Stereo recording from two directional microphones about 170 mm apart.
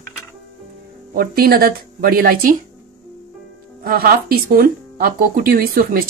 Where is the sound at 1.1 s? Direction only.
60° right (ahead or behind).